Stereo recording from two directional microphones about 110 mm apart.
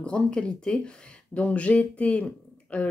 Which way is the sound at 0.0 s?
10° left (ahead or behind).